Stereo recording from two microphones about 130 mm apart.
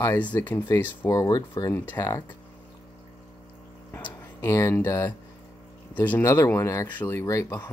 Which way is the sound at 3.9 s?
20° left (ahead or behind).